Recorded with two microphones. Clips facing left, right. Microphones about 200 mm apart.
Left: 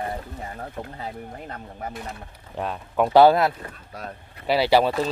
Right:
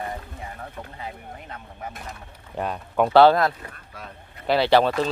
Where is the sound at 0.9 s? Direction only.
40° left (ahead or behind).